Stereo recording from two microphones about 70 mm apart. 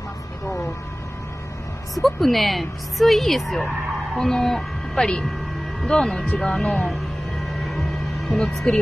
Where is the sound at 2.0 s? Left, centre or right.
Centre.